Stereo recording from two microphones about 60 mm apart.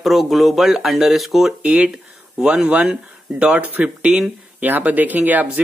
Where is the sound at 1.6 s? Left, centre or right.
Centre.